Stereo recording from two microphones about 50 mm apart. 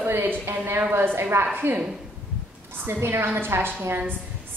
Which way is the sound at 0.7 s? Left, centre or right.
Right.